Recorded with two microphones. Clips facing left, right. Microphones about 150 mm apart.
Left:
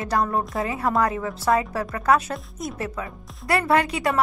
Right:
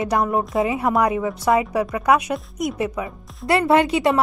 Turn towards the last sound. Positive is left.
turn(degrees=-25)  # may be behind; listen again after turning